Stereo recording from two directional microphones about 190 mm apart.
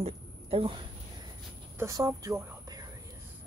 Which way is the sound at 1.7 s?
15° right (ahead or behind).